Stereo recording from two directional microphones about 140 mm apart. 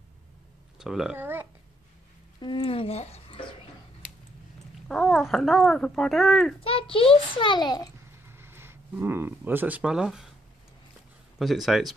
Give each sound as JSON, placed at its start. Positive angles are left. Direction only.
{"t": 0.7, "sound": "speech", "side_deg": -5}
{"t": 1.1, "sound": "a sound", "side_deg": -15}
{"t": 2.4, "sound": "speech", "side_deg": 40}
{"t": 4.8, "sound": "a sound", "side_deg": 5}
{"t": 5.3, "sound": "a woman's voice", "side_deg": 0}
{"t": 6.6, "sound": "a child's voice", "side_deg": 40}
{"t": 8.3, "sound": "speech", "side_deg": -15}
{"t": 11.3, "sound": "a woman's voice", "side_deg": 0}